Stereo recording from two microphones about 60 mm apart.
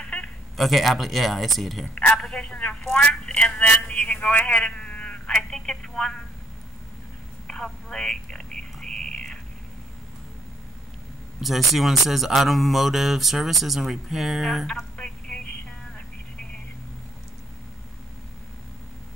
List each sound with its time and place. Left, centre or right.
0.0 s a sound: centre
0.6 s speech: centre
2.3 s speech: centre
3.3 s speech: centre
3.5 s speech: left
7.4 s a sound: centre
11.4 s speech: centre
14.7 s telephone: centre